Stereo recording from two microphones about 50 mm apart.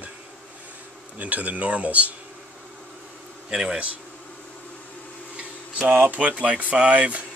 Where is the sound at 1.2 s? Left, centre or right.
Right.